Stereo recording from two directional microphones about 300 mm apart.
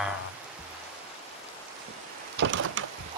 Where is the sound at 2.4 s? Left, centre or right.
Right.